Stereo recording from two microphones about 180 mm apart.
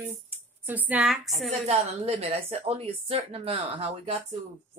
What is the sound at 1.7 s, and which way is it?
A woman's voice, 35° right (ahead or behind).